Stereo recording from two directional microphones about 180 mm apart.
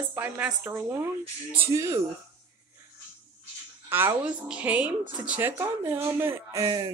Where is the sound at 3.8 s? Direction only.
10° right (ahead or behind).